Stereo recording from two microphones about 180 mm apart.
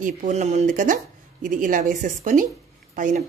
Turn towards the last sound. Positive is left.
turn(degrees=-45)  # may be behind; listen again after turning